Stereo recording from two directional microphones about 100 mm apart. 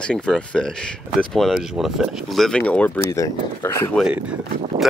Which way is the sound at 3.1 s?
30° left (ahead or behind).